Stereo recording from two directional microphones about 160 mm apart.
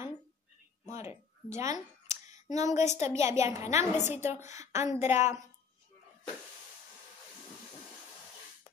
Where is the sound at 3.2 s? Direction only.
20° right (ahead or behind).